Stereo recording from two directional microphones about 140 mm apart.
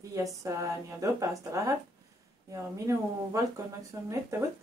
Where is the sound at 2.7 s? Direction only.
20° right (ahead or behind).